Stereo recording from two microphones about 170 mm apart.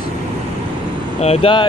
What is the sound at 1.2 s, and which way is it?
Speech, 35° left (ahead or behind).